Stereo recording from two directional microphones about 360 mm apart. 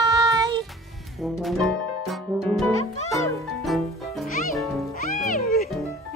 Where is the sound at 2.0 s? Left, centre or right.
Centre.